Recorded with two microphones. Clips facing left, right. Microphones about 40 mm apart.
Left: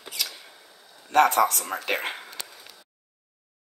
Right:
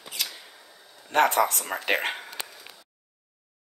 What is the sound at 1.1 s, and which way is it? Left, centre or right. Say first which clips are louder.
Speech: left 2 dB; right.